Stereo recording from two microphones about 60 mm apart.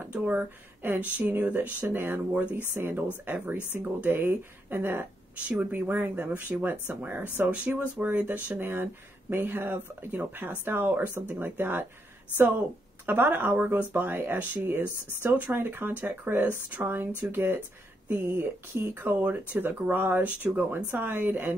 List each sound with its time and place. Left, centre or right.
0.1 s speech: right
4.1 s speech: right
7.4 s speech: right
8.5 s speech: right
13.0 s speech: right